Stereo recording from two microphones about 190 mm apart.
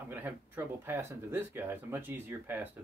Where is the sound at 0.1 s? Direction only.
10° right (ahead or behind).